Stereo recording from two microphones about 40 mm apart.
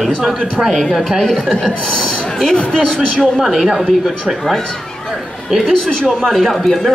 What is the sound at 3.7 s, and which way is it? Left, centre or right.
Speech, centre.